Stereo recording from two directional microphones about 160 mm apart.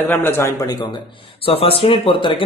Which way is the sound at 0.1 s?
15° left (ahead or behind).